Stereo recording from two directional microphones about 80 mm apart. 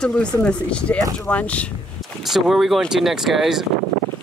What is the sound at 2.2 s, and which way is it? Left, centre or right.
Speech, centre.